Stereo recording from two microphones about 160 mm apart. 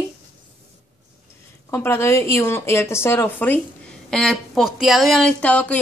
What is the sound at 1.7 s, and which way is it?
Speech, 15° left (ahead or behind).